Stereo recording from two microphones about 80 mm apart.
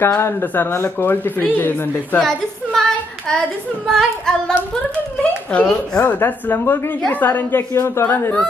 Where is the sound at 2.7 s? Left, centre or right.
Centre.